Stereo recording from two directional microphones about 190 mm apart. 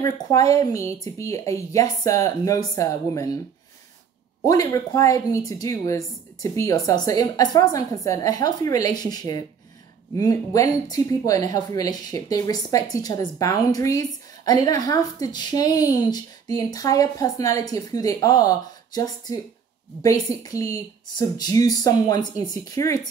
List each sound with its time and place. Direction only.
0.0 s a woman's voice: 15° left (ahead or behind)
4.5 s a woman's voice: 15° left (ahead or behind)